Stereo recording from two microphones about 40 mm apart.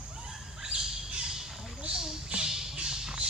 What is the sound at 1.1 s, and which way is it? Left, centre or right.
Squawk, centre.